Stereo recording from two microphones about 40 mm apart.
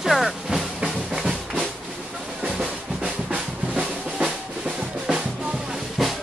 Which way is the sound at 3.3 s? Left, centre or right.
Right.